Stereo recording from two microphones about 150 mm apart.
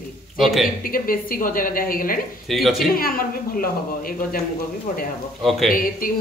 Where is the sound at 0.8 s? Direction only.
70° left (ahead or behind).